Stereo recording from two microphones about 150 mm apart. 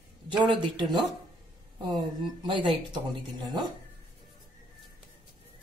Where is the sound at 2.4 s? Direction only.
30° right (ahead or behind).